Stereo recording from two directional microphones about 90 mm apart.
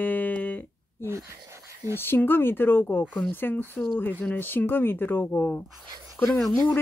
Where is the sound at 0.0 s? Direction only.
20° left (ahead or behind).